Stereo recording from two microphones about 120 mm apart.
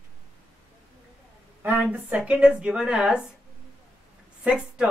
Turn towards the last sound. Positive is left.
turn(degrees=-10)  # may be behind; listen again after turning